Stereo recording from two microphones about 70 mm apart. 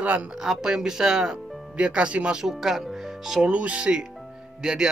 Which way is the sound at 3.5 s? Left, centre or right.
Centre.